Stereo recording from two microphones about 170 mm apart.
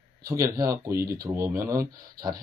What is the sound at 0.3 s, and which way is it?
Speech, 20° right (ahead or behind).